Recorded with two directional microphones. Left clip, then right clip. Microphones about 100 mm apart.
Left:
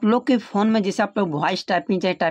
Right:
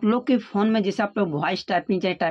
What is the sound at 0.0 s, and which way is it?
Speech, 40° left (ahead or behind).